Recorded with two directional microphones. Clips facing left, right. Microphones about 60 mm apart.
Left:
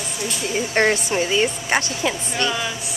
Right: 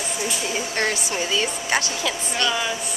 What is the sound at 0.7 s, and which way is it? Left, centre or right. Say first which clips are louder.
A woman's voice: left 8 dB; left.